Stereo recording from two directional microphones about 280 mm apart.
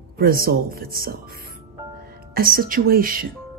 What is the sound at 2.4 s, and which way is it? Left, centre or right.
Speech, right.